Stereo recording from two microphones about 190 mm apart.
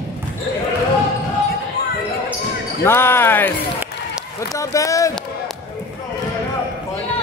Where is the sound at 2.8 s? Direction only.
10° left (ahead or behind).